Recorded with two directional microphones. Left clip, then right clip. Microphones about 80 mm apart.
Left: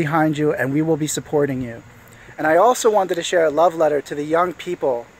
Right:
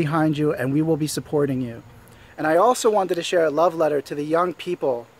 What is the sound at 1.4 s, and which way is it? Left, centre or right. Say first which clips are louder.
Speech: left 2 dB; right.